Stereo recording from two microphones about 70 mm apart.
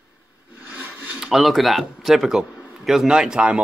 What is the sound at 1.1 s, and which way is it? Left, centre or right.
A man's voice, centre.